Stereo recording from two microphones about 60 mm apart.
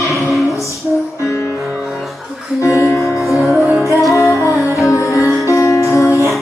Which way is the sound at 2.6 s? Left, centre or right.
Left.